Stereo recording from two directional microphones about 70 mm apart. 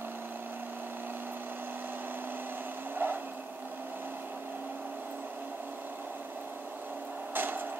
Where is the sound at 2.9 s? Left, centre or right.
Right.